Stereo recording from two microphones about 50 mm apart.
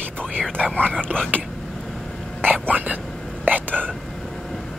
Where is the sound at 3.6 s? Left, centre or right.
Left.